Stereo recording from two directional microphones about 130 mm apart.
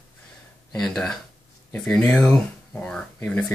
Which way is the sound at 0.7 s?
5° left (ahead or behind).